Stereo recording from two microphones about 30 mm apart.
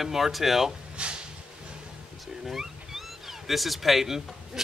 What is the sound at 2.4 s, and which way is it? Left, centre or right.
Speech, centre.